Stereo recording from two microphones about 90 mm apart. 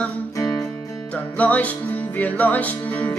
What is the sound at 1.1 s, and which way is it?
Music, 15° left (ahead or behind).